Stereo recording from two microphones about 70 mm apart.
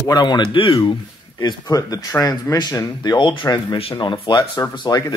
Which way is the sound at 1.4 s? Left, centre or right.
Left.